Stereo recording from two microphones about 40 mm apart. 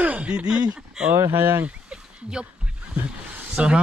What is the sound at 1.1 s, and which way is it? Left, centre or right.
Speech, right.